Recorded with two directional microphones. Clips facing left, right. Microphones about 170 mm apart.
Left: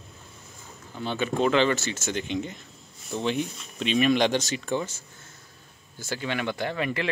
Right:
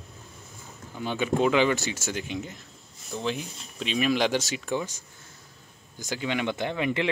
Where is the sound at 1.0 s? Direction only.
10° right (ahead or behind).